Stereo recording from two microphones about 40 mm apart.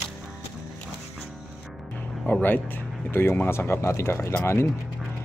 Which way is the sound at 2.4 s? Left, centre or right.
Left.